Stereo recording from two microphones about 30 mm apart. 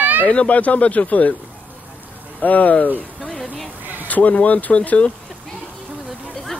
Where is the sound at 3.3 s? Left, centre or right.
Centre.